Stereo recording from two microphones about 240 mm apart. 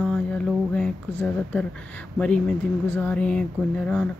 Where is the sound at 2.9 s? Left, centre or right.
Centre.